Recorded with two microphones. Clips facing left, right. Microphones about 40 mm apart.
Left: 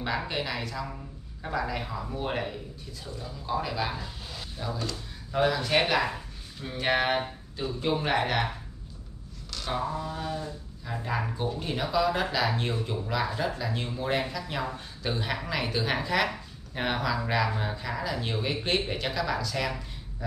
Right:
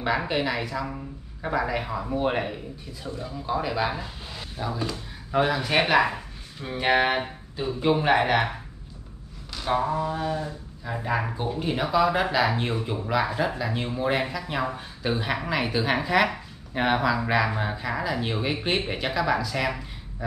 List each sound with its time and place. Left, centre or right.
0.3 s a man's voice: centre
6.1 s a sound: right
6.9 s speech: centre
9.5 s speech: centre